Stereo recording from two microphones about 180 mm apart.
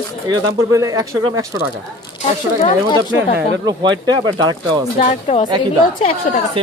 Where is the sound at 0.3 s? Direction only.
20° right (ahead or behind).